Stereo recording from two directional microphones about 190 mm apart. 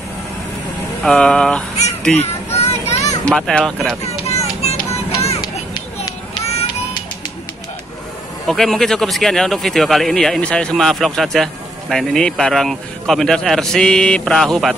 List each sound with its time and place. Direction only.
1.0 s speech: 5° left (ahead or behind)
2.1 s children playing: 35° left (ahead or behind)
3.3 s speech: 5° left (ahead or behind)
4.3 s music: 35° left (ahead or behind)
6.4 s music: 30° left (ahead or behind)
8.5 s speech: centre (ahead or behind)